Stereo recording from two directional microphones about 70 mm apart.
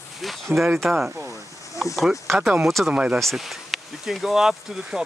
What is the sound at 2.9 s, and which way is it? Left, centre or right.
Speech, centre.